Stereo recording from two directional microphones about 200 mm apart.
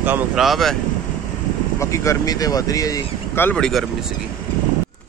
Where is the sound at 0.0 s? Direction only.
10° right (ahead or behind).